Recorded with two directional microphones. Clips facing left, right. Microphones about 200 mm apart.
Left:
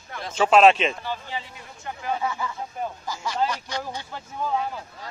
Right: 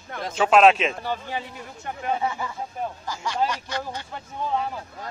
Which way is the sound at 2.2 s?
20° right (ahead or behind).